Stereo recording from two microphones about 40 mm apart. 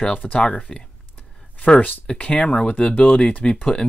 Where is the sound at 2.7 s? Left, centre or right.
Left.